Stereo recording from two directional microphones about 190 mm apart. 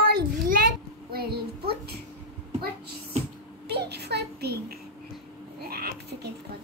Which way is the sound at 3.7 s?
60° right (ahead or behind).